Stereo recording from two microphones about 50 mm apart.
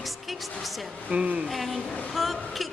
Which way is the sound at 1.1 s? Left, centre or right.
Right.